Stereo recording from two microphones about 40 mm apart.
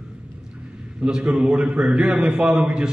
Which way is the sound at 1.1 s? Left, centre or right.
Centre.